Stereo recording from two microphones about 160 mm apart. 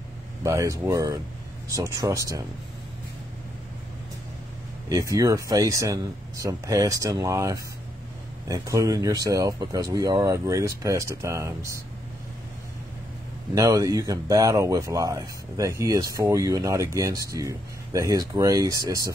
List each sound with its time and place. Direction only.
0.4 s speech: 20° right (ahead or behind)
4.8 s speech: 20° right (ahead or behind)
13.6 s speech: 20° right (ahead or behind)